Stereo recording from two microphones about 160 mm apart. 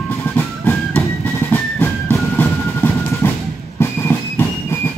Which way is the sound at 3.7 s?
15° left (ahead or behind).